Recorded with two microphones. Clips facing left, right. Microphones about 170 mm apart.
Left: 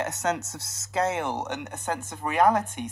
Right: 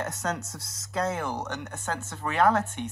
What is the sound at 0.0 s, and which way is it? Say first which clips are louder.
Speech: left 4 dB; 20° left (ahead or behind).